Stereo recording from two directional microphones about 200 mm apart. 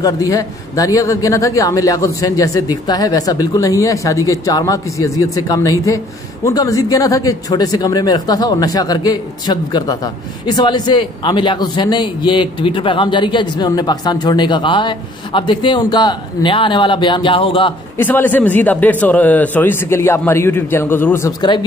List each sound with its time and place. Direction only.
0.0 s a man's voice: 15° left (ahead or behind)
17.9 s a man's voice: 10° left (ahead or behind)